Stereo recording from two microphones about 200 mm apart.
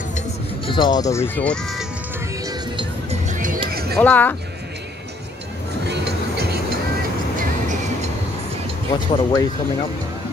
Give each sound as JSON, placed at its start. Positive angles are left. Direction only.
{"t": 0.7, "sound": "speech", "side_deg": 20}
{"t": 2.4, "sound": "music", "side_deg": -25}
{"t": 3.3, "sound": "music", "side_deg": -40}
{"t": 4.0, "sound": "speech", "side_deg": 10}
{"t": 5.9, "sound": "music", "side_deg": -55}
{"t": 8.9, "sound": "speech", "side_deg": 20}